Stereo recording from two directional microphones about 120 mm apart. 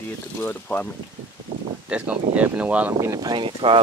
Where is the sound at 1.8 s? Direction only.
10° right (ahead or behind).